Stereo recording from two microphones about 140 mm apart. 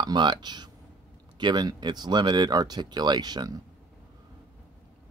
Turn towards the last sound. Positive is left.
turn(degrees=-30)  # may be behind; listen again after turning